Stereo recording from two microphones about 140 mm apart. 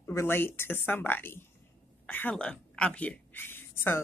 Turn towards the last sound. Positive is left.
turn(degrees=15)  # may be behind; listen again after turning